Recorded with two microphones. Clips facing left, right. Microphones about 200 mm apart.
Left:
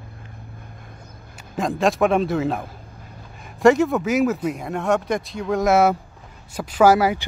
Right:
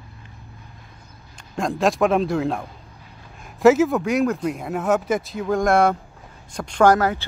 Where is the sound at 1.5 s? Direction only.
Centre (ahead or behind).